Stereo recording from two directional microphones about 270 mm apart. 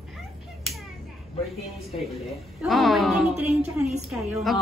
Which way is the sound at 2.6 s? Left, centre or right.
Centre.